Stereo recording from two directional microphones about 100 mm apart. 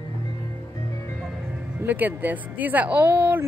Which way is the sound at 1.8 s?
20° right (ahead or behind).